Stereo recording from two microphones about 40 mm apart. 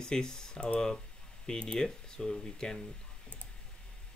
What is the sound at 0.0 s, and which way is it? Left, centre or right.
Speech, centre.